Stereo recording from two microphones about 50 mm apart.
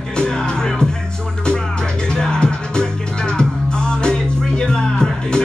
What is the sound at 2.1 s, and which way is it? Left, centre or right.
Music, centre.